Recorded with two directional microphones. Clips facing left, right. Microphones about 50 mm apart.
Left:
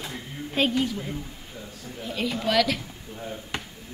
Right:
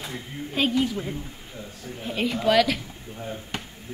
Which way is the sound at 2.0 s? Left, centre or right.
Right.